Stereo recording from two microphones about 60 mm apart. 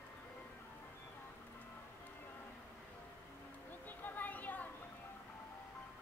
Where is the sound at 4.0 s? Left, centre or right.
Left.